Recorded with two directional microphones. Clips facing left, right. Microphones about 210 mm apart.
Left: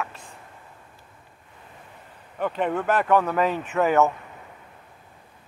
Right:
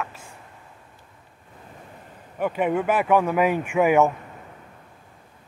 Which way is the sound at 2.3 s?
10° right (ahead or behind).